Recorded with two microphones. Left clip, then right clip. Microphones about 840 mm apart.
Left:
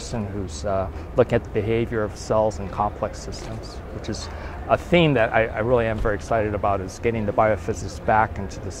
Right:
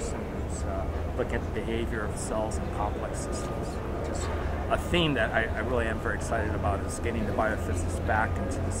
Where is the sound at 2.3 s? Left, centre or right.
Left.